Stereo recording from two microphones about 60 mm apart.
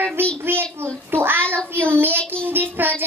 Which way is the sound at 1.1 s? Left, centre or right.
Right.